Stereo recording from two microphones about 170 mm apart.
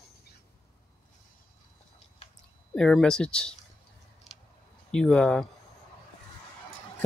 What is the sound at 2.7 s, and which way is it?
Speech, 5° left (ahead or behind).